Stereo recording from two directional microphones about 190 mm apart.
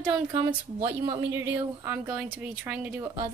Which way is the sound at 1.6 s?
10° right (ahead or behind).